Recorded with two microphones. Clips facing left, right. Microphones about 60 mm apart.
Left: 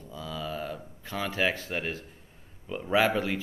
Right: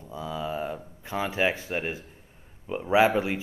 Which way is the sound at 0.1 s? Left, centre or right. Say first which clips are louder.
Right 4 dB; right.